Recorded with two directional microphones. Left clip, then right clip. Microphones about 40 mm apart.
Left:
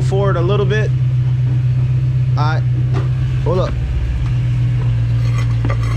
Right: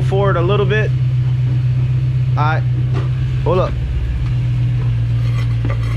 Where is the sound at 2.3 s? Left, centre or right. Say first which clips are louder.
Right 3 dB; right.